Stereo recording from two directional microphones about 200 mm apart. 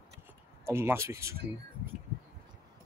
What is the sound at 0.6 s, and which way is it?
Speech, 10° right (ahead or behind).